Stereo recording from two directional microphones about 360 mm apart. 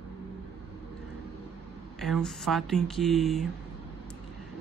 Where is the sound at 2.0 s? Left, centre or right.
Centre.